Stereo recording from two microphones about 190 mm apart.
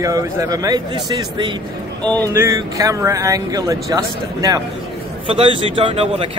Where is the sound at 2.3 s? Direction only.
15° right (ahead or behind).